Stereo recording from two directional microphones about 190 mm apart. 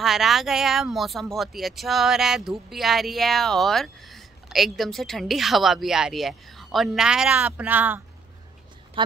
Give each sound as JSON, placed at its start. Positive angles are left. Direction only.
{"t": 0.0, "sound": "speech", "side_deg": 0}
{"t": 9.0, "sound": "speech", "side_deg": -25}